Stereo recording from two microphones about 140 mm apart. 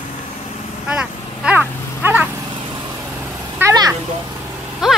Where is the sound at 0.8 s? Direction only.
5° right (ahead or behind).